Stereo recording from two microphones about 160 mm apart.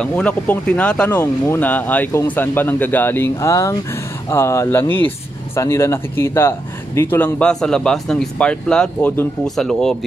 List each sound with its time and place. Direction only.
0.0 s speech: 10° left (ahead or behind)